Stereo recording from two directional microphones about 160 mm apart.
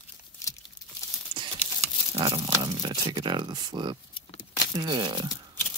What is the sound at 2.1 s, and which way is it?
Speech, 30° right (ahead or behind).